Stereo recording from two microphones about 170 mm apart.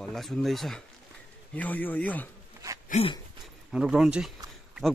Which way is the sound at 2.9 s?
35° left (ahead or behind).